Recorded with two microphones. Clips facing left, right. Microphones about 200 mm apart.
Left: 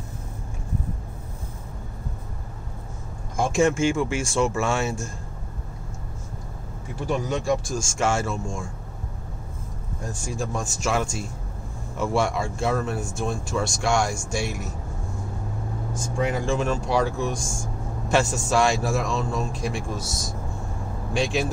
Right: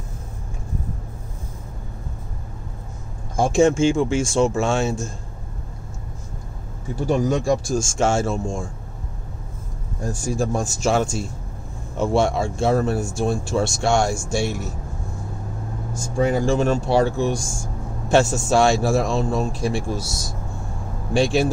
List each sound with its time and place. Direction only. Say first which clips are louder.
3.3 s speech: right 4 dB; 40° right (ahead or behind)
3.6 s speech: right 4 dB; 25° right (ahead or behind)
7.1 s a man's voice: right 5 dB; 40° right (ahead or behind)
7.7 s a man's voice: right 4 dB; 30° right (ahead or behind)
10.4 s a man's voice: right 5 dB; 40° right (ahead or behind)
16.2 s a man's voice: right 6 dB; 35° right (ahead or behind)
21.1 s a man's voice: right 6 dB; 30° right (ahead or behind)